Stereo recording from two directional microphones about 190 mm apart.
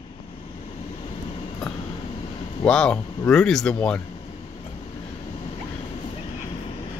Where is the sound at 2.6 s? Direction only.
5° left (ahead or behind).